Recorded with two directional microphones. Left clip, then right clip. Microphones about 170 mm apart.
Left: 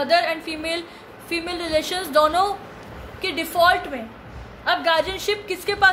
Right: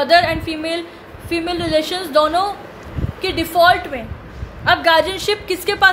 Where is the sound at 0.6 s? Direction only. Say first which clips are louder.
Right 4 dB; 5° left (ahead or behind).